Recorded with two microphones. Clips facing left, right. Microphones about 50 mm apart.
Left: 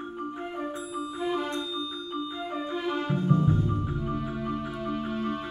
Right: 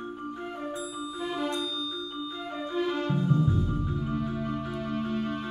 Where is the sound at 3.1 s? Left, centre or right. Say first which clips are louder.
Left 4 dB; left.